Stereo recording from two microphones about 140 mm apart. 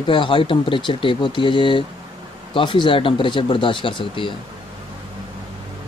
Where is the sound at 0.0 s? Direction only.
35° left (ahead or behind).